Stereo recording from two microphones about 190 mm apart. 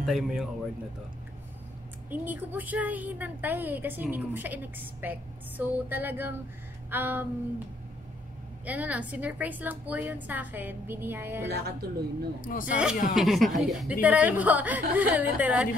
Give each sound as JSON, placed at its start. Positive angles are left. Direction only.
{"t": 0.0, "sound": "a woman's voice", "side_deg": 0}
{"t": 2.0, "sound": "a woman's voice", "side_deg": -10}
{"t": 8.6, "sound": "a woman's voice", "side_deg": -10}
{"t": 11.4, "sound": "a woman's voice", "side_deg": -55}
{"t": 12.4, "sound": "speech", "side_deg": 45}
{"t": 12.7, "sound": "a woman's voice", "side_deg": -5}